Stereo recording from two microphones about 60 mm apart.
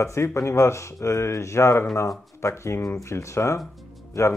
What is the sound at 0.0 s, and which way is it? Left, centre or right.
Speech, left.